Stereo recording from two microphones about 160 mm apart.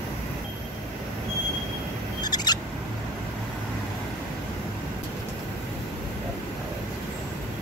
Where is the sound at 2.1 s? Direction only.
25° left (ahead or behind).